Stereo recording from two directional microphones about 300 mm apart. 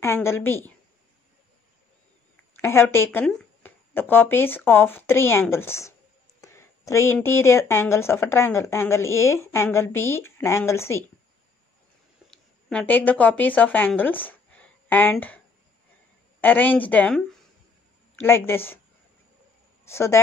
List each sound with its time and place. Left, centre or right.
0.0 s speech: centre
2.6 s speech: centre
12.3 s a woman's voice: centre
18.2 s speech: centre
19.8 s speech: centre